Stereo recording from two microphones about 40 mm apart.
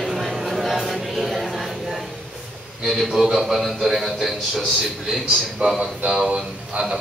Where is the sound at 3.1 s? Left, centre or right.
Centre.